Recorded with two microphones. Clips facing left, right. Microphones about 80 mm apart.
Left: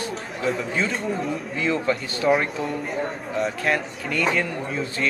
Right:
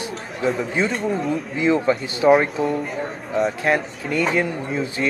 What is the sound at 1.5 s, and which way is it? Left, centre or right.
Speech, centre.